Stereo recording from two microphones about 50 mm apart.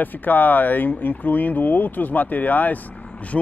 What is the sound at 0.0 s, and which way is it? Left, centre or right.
Speech, left.